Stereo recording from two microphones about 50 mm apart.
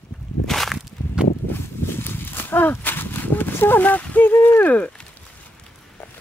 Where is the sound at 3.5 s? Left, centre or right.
Left.